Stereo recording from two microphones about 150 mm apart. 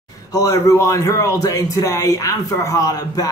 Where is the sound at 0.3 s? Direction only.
25° left (ahead or behind).